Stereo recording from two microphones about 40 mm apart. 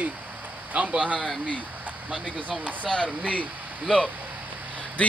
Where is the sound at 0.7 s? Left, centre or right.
Right.